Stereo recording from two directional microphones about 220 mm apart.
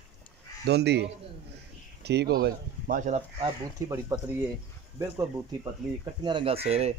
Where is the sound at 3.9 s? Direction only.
15° right (ahead or behind).